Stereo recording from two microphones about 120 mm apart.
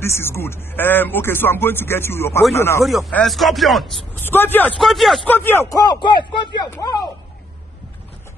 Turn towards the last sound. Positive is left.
turn(degrees=35)  # may be behind; listen again after turning